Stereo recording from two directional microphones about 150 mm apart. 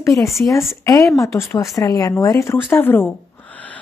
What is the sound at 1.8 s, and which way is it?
A woman's voice, 25° left (ahead or behind).